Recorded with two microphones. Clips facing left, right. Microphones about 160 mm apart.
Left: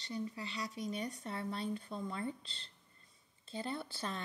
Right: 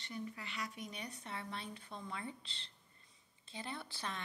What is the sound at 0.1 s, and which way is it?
Speech, 25° left (ahead or behind).